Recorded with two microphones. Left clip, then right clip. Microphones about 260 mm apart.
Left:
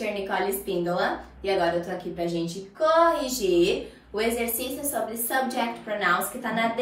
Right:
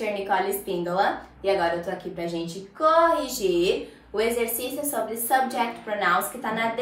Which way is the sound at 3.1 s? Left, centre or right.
Centre.